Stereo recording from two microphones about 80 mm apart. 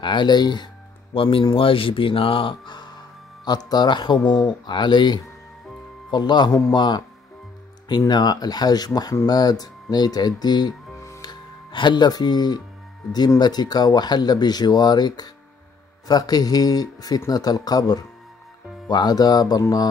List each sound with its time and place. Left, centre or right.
0.0 s speech: left
1.4 s speech: left
3.4 s speech: left
8.1 s speech: left
11.1 s music: left
13.4 s speech: left